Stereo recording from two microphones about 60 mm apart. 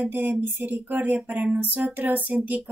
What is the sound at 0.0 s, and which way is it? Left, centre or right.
Speech, right.